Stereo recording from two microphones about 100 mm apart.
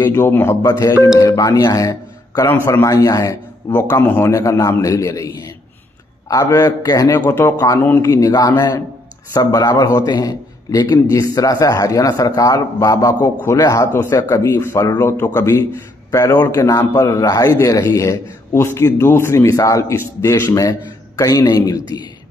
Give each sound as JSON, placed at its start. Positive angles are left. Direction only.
{"t": 0.0, "sound": "speech", "side_deg": 25}
{"t": 0.6, "sound": "a man's voice", "side_deg": 40}
{"t": 3.7, "sound": "speech", "side_deg": 20}
{"t": 4.3, "sound": "a man's voice", "side_deg": 30}
{"t": 6.4, "sound": "a man's voice", "side_deg": 35}